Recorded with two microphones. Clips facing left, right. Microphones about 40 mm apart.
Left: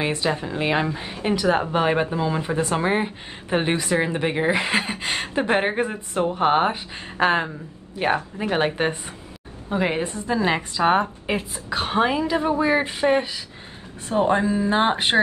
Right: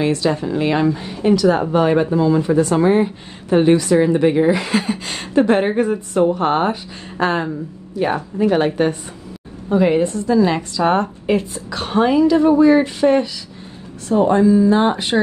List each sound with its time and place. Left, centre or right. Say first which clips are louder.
0.0 s a woman's voice: right 6 dB; left